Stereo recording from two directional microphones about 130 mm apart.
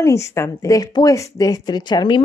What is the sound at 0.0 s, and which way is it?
Speech, 25° left (ahead or behind).